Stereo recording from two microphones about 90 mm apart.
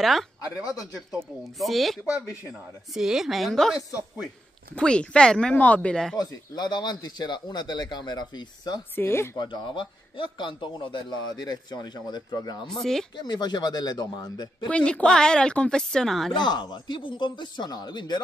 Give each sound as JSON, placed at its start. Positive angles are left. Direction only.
{"t": 0.0, "sound": "a woman's voice", "side_deg": 0}
{"t": 1.6, "sound": "a woman's voice", "side_deg": 0}
{"t": 6.1, "sound": "speech", "side_deg": 50}
{"t": 8.9, "sound": "speech", "side_deg": 25}
{"t": 9.4, "sound": "a man's voice", "side_deg": 55}
{"t": 12.6, "sound": "a woman's voice", "side_deg": 5}
{"t": 13.1, "sound": "speech", "side_deg": 50}
{"t": 14.7, "sound": "speech", "side_deg": 15}
{"t": 16.3, "sound": "a man's voice", "side_deg": 55}